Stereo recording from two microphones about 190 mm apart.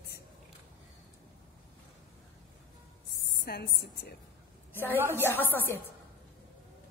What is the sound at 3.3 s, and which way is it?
Speech, 55° left (ahead or behind).